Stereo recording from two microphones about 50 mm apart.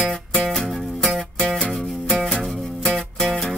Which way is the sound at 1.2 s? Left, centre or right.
Centre.